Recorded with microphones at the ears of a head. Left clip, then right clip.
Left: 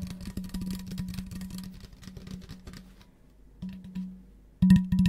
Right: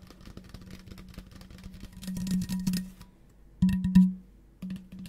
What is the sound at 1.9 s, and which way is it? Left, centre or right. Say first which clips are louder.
Music: right 11 dB; right.